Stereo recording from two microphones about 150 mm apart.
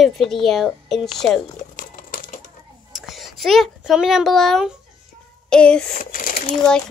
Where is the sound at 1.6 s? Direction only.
65° left (ahead or behind).